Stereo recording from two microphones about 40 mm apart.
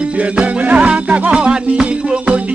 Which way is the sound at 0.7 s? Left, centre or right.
Right.